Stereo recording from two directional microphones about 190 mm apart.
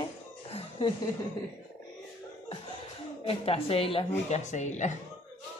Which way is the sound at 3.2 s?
30° left (ahead or behind).